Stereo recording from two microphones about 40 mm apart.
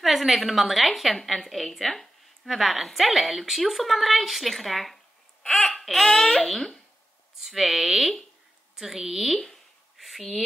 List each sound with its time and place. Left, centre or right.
0.0 s a woman's voice: centre
7.3 s a woman's voice: centre
9.9 s a sound: centre